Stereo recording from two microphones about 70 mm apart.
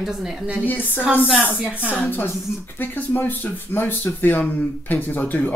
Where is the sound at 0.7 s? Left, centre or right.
Left.